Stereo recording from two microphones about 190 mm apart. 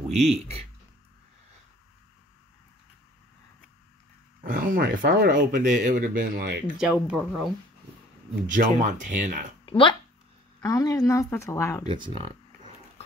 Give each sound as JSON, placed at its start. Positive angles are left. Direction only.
{"t": 0.1, "sound": "speech", "side_deg": -35}
{"t": 4.4, "sound": "speech", "side_deg": -45}
{"t": 6.8, "sound": "speech", "side_deg": -5}
{"t": 8.5, "sound": "speech", "side_deg": -40}
{"t": 9.7, "sound": "speech", "side_deg": 25}
{"t": 11.9, "sound": "speech", "side_deg": -25}